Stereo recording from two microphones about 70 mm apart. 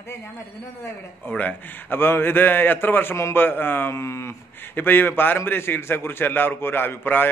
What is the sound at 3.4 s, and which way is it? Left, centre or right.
Speech, left.